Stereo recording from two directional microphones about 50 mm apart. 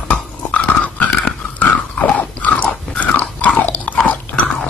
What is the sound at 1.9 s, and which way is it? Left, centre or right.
Biting, left.